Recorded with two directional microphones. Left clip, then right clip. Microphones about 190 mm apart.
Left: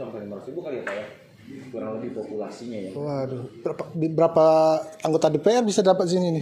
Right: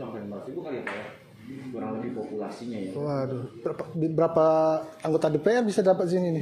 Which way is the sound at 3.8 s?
15° left (ahead or behind).